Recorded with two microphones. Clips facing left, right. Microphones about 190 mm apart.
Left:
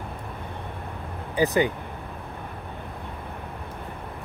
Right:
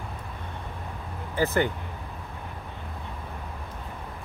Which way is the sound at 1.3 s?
15° left (ahead or behind).